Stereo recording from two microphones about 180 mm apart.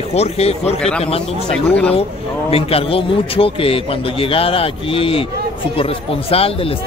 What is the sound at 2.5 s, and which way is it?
Speech, 35° left (ahead or behind).